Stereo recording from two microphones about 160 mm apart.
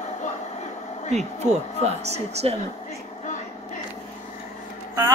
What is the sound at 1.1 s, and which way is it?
Speech, 45° right (ahead or behind).